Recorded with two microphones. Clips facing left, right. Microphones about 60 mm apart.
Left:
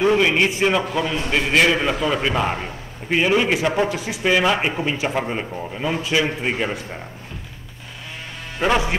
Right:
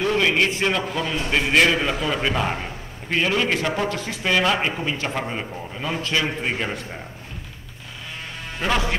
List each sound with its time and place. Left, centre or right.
0.0 s a man's voice: centre
8.5 s a man's voice: centre